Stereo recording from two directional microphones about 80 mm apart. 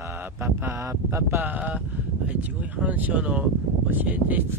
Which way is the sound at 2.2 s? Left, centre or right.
Centre.